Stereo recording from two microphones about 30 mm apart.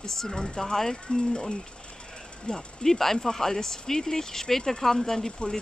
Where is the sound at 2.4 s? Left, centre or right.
Centre.